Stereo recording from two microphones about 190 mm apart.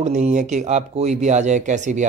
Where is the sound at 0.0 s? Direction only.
40° right (ahead or behind).